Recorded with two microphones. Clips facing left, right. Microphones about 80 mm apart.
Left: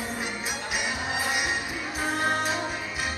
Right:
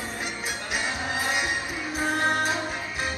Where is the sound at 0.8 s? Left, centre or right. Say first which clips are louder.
Right 1 dB; centre.